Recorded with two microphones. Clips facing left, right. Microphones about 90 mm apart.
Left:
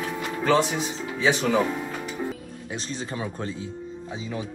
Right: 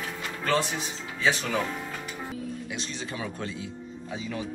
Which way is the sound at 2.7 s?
35° left (ahead or behind).